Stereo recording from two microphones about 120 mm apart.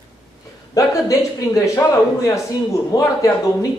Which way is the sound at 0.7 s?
30° left (ahead or behind).